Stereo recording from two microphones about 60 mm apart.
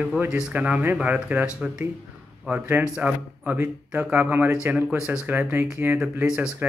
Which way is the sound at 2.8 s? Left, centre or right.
Right.